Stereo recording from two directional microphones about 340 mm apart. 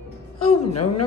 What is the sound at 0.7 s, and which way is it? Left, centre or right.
Speech, left.